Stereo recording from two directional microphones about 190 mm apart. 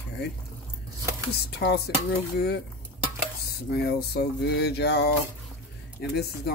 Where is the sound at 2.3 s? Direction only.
60° left (ahead or behind).